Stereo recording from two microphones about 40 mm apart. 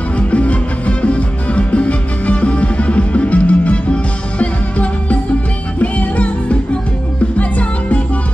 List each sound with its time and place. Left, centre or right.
0.3 s music: left